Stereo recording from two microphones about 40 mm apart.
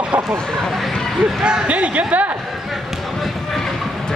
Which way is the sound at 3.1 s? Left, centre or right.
Centre.